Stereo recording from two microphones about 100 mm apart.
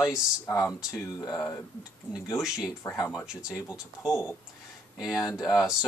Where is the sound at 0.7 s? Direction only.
5° right (ahead or behind).